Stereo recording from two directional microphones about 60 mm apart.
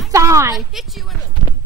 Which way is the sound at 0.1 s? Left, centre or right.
Right.